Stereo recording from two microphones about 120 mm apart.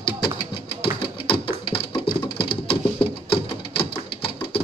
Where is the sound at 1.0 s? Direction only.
50° left (ahead or behind).